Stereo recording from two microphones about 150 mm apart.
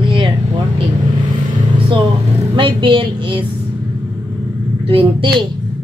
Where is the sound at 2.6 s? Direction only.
35° right (ahead or behind).